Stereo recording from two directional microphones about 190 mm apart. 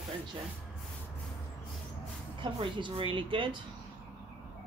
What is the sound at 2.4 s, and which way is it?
Speech, 25° right (ahead or behind).